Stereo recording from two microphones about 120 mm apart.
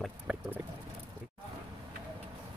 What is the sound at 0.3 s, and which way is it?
Boat, 10° right (ahead or behind).